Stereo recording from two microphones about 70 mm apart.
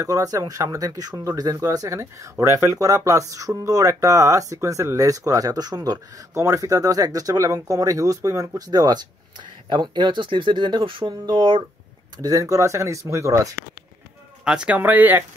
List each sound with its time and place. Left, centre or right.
0.0 s speech: right
5.9 s speech: right
11.0 s speech: right
12.2 s speech: right
14.4 s speech: centre
14.8 s speech: right